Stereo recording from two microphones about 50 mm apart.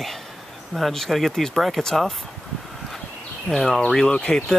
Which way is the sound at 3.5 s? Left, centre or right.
Centre.